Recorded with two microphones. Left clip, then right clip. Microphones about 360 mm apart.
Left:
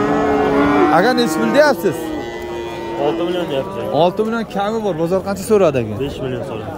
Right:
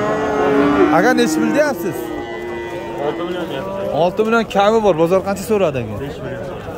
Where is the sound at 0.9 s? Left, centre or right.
Centre.